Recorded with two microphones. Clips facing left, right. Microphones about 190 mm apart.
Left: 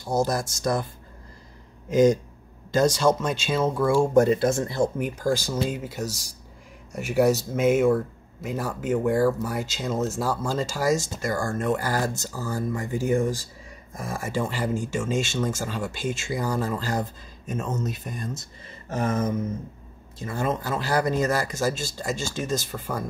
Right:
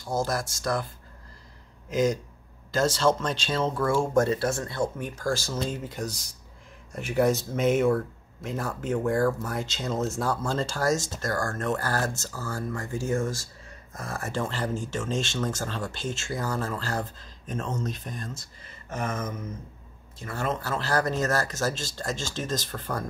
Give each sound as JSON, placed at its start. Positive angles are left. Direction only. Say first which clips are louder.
{"t": 0.0, "sound": "speech", "louder": "left 4 dB", "side_deg": 20}
{"t": 2.7, "sound": "speech", "louder": "left 3 dB", "side_deg": 15}
{"t": 18.9, "sound": "a sound", "louder": "left 6 dB", "side_deg": 30}
{"t": 20.2, "sound": "speech", "louder": "left 3 dB", "side_deg": 20}